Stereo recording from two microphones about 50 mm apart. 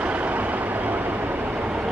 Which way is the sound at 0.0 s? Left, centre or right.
Right.